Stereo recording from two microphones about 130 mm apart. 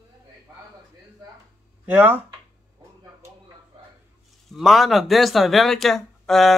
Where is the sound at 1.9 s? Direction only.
15° right (ahead or behind).